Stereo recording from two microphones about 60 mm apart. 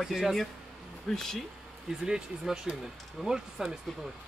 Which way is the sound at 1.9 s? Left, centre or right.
Centre.